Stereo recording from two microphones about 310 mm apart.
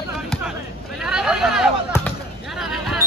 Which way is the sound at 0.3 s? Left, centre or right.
Centre.